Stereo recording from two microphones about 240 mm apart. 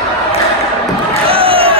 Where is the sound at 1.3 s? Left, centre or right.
Right.